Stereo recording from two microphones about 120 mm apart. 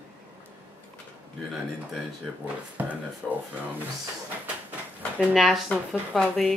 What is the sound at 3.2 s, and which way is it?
Speech, 5° left (ahead or behind).